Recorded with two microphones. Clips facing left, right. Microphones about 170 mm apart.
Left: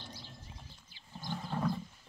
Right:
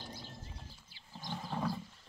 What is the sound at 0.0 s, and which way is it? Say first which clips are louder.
Horse: right 2 dB; 50° right (ahead or behind).